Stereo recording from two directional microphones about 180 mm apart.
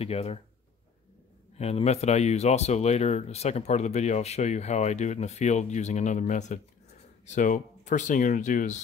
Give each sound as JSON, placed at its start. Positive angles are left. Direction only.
{"t": 0.0, "sound": "speech", "side_deg": 35}
{"t": 1.6, "sound": "speech", "side_deg": 35}